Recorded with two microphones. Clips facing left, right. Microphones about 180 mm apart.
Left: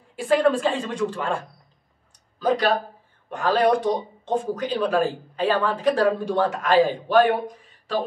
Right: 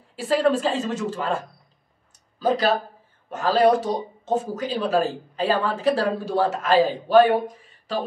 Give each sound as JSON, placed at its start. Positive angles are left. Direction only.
{"t": 0.2, "sound": "a woman's voice", "side_deg": -5}
{"t": 2.4, "sound": "a woman's voice", "side_deg": -5}